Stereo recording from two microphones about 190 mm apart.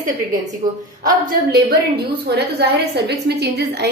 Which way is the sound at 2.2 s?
60° right (ahead or behind).